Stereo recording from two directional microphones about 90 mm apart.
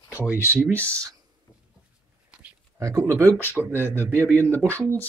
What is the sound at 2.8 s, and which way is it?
Speech, 35° right (ahead or behind).